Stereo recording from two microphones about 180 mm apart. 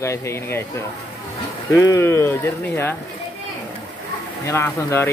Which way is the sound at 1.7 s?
15° left (ahead or behind).